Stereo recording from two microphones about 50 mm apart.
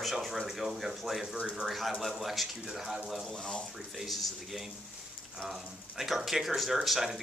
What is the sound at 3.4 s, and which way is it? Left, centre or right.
Speech, centre.